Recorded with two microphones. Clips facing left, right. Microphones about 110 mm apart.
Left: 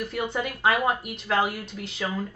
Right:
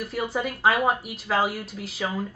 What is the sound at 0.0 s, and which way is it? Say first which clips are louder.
Speech: right 1 dB; 5° right (ahead or behind).